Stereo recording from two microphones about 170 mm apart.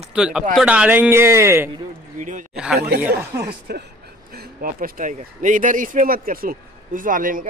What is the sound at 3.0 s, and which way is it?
Speech, 15° right (ahead or behind).